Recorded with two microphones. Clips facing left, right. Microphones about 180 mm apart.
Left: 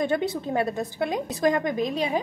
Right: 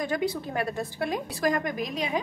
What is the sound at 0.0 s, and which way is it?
A woman's voice, 25° left (ahead or behind).